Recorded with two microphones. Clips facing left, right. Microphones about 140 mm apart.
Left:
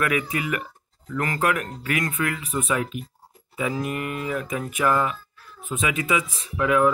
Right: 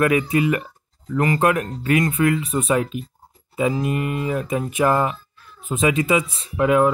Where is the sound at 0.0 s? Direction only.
30° right (ahead or behind).